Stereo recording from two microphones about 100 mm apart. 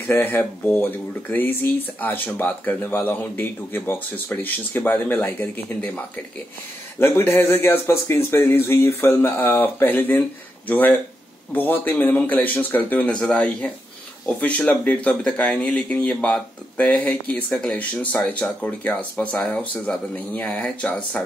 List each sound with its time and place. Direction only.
0.0 s speech: 20° left (ahead or behind)
7.0 s speech: 25° left (ahead or behind)